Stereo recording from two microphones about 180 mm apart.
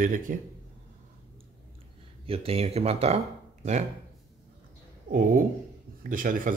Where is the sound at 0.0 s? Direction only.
50° right (ahead or behind).